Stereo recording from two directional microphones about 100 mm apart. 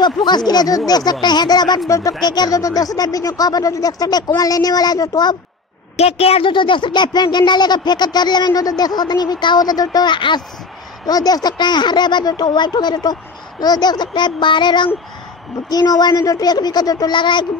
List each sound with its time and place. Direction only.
0.0 s speech: 45° left (ahead or behind)
1.9 s speech: 30° left (ahead or behind)
2.2 s speech: 45° left (ahead or behind)
5.9 s a woman's voice: 90° left
6.5 s speech: 55° left (ahead or behind)
11.1 s speech: 40° left (ahead or behind)